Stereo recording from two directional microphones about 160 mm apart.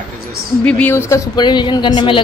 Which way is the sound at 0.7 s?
10° left (ahead or behind).